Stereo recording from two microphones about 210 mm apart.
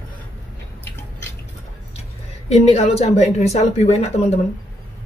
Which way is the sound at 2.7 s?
30° left (ahead or behind).